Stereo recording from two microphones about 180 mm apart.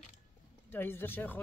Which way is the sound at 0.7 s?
10° left (ahead or behind).